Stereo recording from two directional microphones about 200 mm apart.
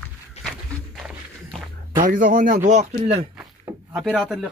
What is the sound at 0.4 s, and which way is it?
Walk, centre (ahead or behind).